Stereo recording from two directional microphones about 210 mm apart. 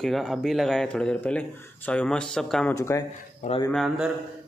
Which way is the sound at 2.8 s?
15° left (ahead or behind).